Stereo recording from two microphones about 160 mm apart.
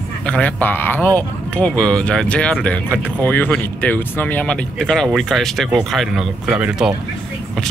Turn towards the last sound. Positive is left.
turn(degrees=-5)  # may be behind; listen again after turning